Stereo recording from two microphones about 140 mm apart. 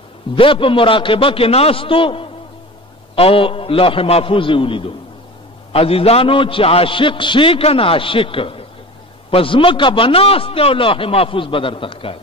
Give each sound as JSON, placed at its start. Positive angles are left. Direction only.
{"t": 0.4, "sound": "a man's voice", "side_deg": 40}